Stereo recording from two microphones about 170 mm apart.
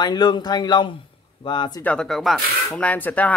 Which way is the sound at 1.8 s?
5° left (ahead or behind).